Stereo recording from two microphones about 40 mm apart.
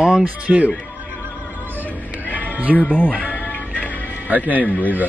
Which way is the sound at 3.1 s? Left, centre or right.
Right.